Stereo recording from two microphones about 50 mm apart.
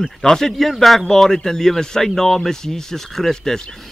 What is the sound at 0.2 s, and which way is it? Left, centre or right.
Speech, centre.